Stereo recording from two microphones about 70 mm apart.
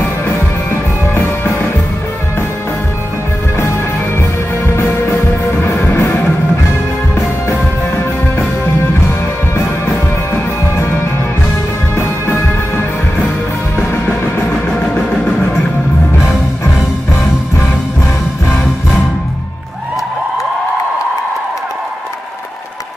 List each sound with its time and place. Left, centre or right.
4.7 s music: left
7.4 s music: left
9.8 s music: left
16.2 s music: left